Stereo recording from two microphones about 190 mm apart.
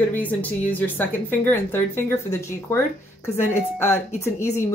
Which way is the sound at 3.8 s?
15° left (ahead or behind).